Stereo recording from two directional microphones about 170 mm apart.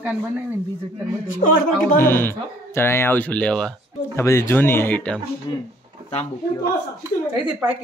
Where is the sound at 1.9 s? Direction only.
15° left (ahead or behind).